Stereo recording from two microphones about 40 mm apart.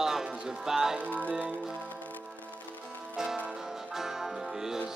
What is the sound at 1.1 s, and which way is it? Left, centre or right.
Music, left.